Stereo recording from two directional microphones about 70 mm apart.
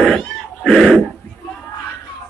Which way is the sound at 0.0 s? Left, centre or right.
Centre.